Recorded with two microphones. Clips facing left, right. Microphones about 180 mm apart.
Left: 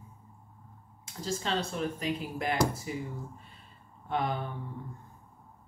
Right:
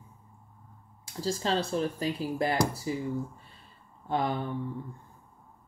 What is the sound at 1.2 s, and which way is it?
Speech, 35° right (ahead or behind).